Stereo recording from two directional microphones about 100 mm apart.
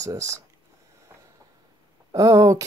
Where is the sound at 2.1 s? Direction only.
35° right (ahead or behind).